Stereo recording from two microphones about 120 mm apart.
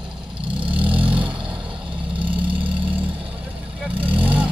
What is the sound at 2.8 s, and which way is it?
Vehicle, 10° right (ahead or behind).